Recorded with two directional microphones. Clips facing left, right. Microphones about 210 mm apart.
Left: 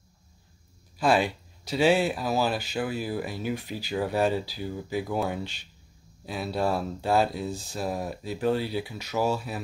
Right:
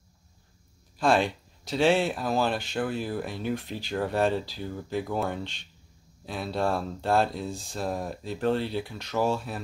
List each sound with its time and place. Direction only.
0.9 s speech: 5° left (ahead or behind)